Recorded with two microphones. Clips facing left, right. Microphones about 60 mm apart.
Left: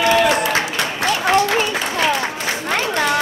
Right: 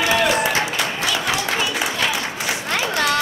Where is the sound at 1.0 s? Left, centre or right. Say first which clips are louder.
Left 10 dB; left.